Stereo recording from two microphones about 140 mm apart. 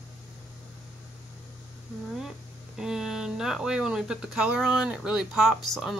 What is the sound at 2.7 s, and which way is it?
Speech, 5° right (ahead or behind).